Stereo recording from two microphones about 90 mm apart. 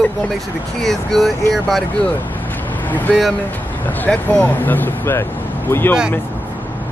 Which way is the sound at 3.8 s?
20° left (ahead or behind).